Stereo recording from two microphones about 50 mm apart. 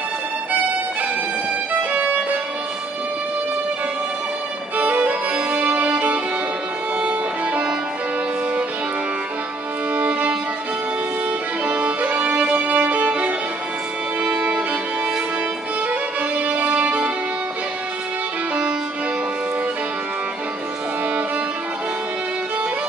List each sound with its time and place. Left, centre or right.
1.7 s violin: right
4.7 s music: right
9.9 s music: right
11.6 s music: right
15.9 s music: right